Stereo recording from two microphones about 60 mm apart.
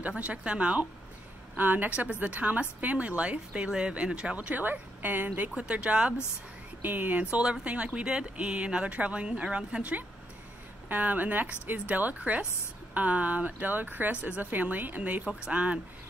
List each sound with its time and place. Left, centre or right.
0.2 s speech: right
1.6 s speech: right
6.8 s speech: right